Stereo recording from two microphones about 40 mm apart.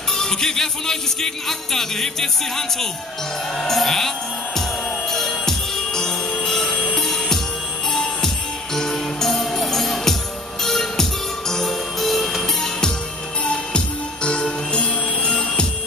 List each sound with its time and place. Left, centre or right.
0.1 s music: centre
5.1 s music: centre
6.4 s jingle bell: centre
7.0 s music: centre
13.5 s music: left